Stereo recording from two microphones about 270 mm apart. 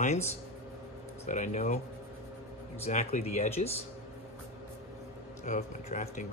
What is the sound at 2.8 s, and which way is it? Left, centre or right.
Speech, left.